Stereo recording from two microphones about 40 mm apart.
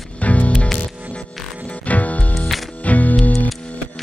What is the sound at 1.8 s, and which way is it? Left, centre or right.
Music, left.